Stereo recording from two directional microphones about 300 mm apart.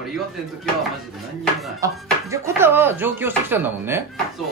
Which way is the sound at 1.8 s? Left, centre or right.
Centre.